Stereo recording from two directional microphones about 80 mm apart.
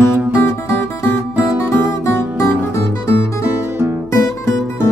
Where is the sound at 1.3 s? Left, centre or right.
Left.